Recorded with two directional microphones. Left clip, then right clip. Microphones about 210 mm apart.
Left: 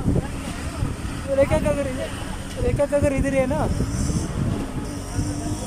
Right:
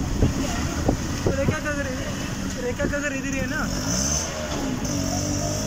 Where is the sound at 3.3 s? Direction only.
25° left (ahead or behind).